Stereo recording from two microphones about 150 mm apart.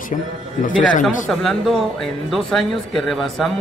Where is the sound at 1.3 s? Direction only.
Centre (ahead or behind).